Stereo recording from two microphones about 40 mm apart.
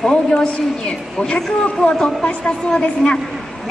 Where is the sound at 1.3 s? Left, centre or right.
Left.